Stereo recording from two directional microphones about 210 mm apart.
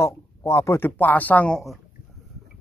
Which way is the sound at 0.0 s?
15° left (ahead or behind).